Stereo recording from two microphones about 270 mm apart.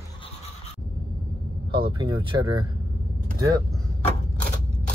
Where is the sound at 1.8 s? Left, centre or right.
Centre.